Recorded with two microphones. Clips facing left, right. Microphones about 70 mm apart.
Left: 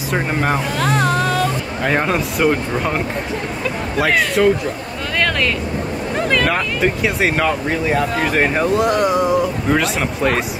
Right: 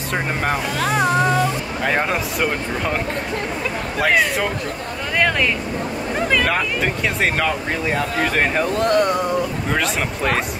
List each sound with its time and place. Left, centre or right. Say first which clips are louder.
0.1 s speech: left 3 dB; centre
1.0 s music: even; centre
1.9 s speech: left 3 dB; centre
4.0 s speech: left 2 dB; centre
5.1 s vehicle: even; centre
6.2 s speech: left 1 dB; centre